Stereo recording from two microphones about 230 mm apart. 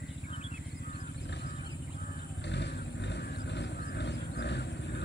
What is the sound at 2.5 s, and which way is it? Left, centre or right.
Vehicle, left.